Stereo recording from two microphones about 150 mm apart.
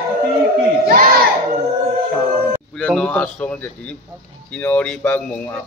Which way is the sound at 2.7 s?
5° left (ahead or behind).